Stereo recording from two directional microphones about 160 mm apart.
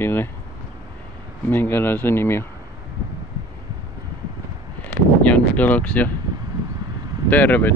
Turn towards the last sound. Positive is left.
turn(degrees=10)  # may be behind; listen again after turning